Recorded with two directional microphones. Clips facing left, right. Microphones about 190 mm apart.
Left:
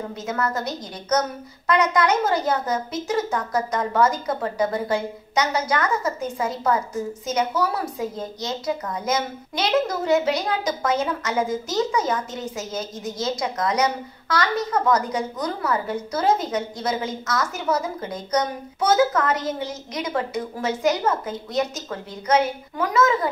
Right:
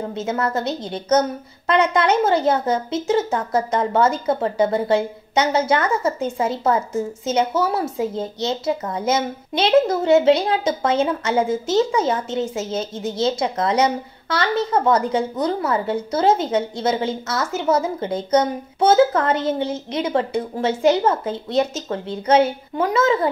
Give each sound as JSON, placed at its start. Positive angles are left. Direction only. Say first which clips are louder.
{"t": 0.1, "sound": "a woman's voice", "louder": "right 4 dB", "side_deg": -25}